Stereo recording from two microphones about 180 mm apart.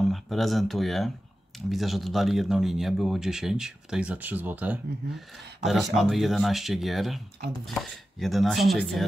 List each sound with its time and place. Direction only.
0.0 s speech: centre (ahead or behind)